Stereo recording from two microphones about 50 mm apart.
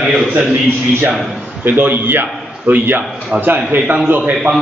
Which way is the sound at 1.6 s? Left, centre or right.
Right.